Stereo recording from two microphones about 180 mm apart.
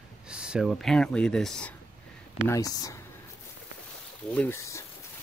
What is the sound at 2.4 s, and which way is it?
Speech, 20° left (ahead or behind).